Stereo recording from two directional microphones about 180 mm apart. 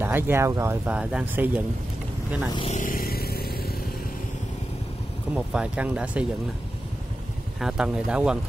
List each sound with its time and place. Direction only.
0.0 s speech: 10° right (ahead or behind)
2.5 s speech: 30° left (ahead or behind)
2.8 s vehicle: 50° left (ahead or behind)
5.3 s speech: 5° right (ahead or behind)
7.6 s speech: 5° right (ahead or behind)